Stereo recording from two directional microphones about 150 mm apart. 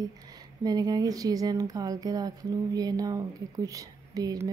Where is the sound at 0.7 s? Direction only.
25° right (ahead or behind).